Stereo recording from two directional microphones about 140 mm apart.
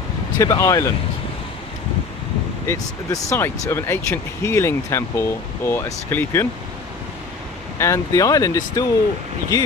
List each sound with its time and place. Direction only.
0.4 s speech: 20° left (ahead or behind)
2.6 s speech: 20° left (ahead or behind)
7.8 s speech: 20° left (ahead or behind)